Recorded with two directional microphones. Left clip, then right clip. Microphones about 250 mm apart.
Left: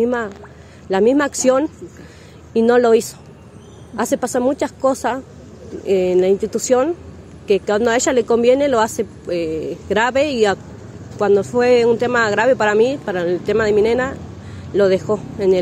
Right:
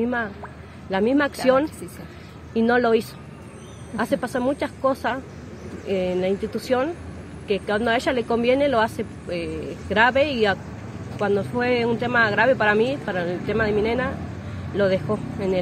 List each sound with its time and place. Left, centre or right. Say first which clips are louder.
0.0 s speech: left 6 dB; left